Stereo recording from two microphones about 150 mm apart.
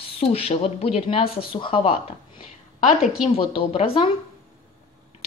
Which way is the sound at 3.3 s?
35° left (ahead or behind).